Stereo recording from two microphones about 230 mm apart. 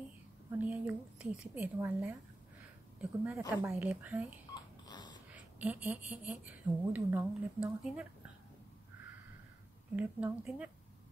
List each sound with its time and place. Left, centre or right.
0.5 s a woman's voice: centre
4.8 s a sound: centre
5.3 s speech: centre
9.9 s speech: centre